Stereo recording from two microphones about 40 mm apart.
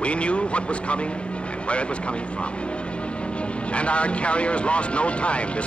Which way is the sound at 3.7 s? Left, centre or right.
Left.